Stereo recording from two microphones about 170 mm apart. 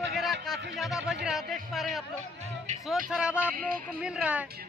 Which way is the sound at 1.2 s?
Centre (ahead or behind).